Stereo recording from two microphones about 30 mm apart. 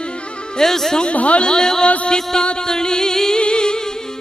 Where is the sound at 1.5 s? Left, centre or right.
Left.